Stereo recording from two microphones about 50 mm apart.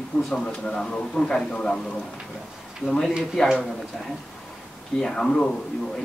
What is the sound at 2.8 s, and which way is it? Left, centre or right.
Speech, centre.